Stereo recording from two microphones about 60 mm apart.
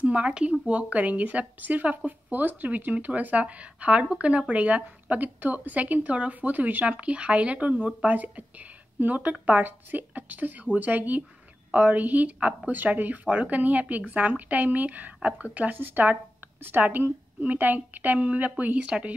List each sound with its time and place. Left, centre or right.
0.0 s speech: right